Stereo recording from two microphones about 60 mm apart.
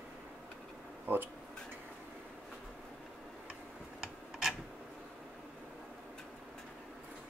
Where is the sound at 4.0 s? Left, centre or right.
Centre.